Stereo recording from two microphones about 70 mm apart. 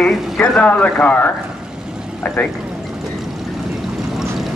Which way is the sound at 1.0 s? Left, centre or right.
Left.